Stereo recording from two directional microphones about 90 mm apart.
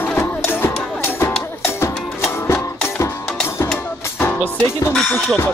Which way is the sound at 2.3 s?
25° left (ahead or behind).